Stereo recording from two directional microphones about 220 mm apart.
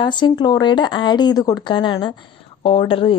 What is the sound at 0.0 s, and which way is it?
A woman's voice, 20° left (ahead or behind).